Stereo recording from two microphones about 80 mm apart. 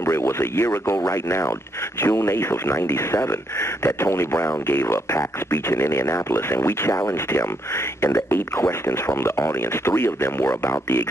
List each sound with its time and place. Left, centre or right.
0.0 s speech: left